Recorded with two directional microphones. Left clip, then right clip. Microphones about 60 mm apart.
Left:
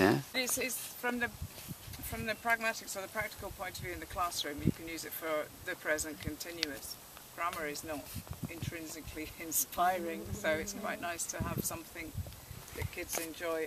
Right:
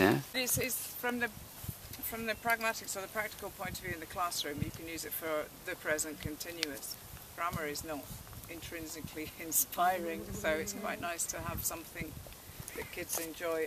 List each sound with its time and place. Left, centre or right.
0.3 s speech: centre